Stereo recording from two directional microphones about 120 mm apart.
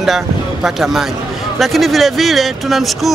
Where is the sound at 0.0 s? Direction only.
Centre (ahead or behind).